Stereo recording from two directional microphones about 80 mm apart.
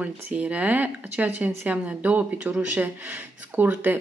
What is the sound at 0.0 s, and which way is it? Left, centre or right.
Speech, centre.